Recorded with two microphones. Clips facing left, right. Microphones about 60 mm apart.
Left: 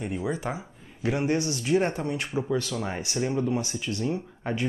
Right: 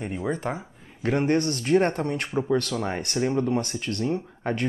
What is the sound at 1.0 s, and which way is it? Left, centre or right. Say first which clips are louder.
Speech: right 3 dB; right.